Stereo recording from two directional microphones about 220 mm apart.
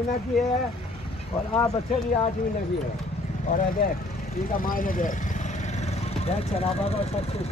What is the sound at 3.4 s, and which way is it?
Speech, 40° left (ahead or behind).